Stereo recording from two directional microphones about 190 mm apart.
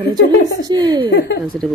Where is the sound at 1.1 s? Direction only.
60° left (ahead or behind).